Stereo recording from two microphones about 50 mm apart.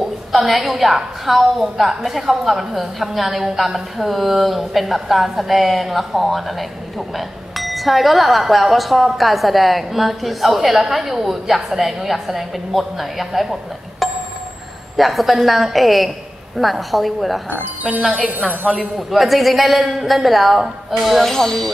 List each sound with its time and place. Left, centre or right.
0.0 s a woman's voice: centre
18.1 s a woman's voice: right
18.9 s a woman's voice: centre
21.3 s speech: centre